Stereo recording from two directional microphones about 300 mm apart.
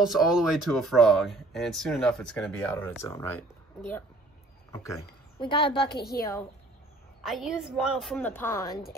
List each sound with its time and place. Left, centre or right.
0.1 s speech: centre
5.4 s a woman's voice: centre
5.9 s a woman's voice: left
7.2 s speech: centre